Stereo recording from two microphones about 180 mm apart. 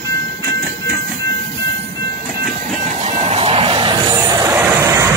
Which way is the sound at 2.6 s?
45° right (ahead or behind).